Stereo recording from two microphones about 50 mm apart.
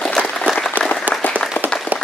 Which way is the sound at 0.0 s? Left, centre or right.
Centre.